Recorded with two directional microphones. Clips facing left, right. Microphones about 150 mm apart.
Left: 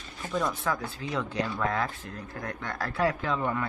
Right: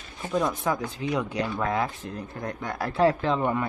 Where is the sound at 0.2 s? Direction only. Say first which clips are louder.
Right 4 dB; 15° right (ahead or behind).